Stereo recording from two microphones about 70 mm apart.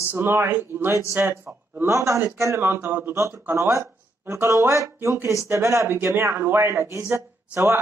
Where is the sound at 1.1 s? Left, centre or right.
Right.